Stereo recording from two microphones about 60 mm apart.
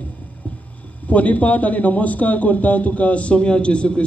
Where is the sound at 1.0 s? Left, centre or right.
Left.